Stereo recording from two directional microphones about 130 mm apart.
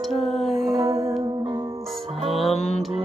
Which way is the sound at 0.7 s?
25° right (ahead or behind).